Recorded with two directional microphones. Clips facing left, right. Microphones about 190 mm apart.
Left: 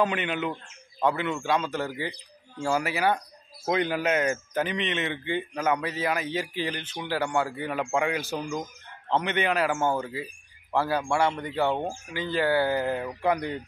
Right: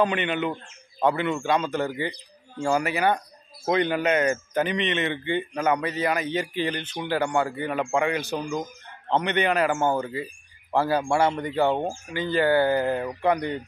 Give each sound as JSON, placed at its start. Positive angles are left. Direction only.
{"t": 0.0, "sound": "speech", "side_deg": 5}
{"t": 9.2, "sound": "speech", "side_deg": 5}
{"t": 10.7, "sound": "speech", "side_deg": -15}
{"t": 12.1, "sound": "speech", "side_deg": 5}